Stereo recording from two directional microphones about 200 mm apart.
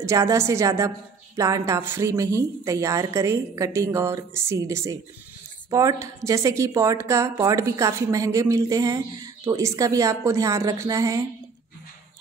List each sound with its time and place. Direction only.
0.0 s a woman's voice: 15° right (ahead or behind)